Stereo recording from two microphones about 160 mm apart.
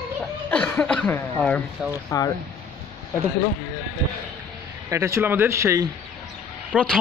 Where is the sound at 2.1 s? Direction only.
20° left (ahead or behind).